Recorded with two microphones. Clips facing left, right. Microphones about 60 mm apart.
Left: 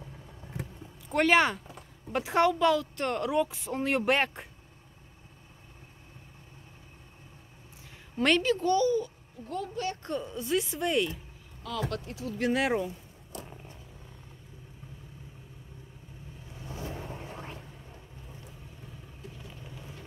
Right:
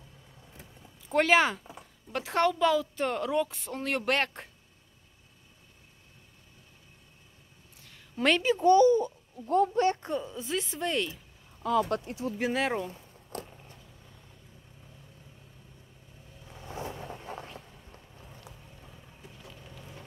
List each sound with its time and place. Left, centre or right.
1.0 s speech: centre
8.4 s a child's voice: centre; by 9.9 s right
10.0 s a woman's voice: centre
11.9 s speech: right
12.4 s a woman's voice: centre
13.3 s vehicle: right
16.6 s vehicle: right